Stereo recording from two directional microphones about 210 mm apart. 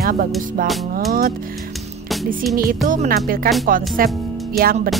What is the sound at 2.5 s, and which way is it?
Speech, 45° right (ahead or behind).